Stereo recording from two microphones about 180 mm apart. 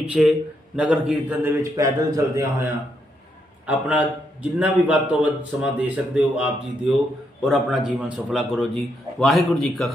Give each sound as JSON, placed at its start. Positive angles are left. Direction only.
{"t": 0.1, "sound": "a man's voice", "side_deg": -5}
{"t": 3.6, "sound": "a man's voice", "side_deg": -5}